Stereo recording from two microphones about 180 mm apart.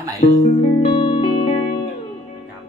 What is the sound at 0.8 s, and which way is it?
Music, 30° left (ahead or behind).